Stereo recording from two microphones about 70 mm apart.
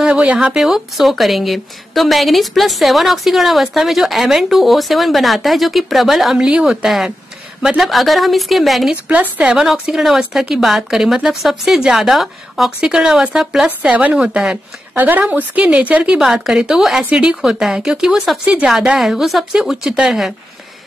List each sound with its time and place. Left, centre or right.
0.0 s speech: centre
0.6 s a woman's voice: centre
8.9 s a woman's voice: right
13.8 s a woman's voice: right
14.1 s speech: centre
15.0 s a woman's voice: right
16.3 s speech: centre
18.4 s speech: centre
18.7 s a woman's voice: centre